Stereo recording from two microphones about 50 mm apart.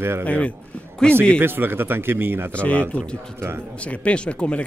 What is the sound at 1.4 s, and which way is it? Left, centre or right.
A man's voice, right.